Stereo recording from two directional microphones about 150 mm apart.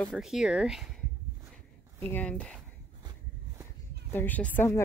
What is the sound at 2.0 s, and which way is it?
Speech, 10° left (ahead or behind).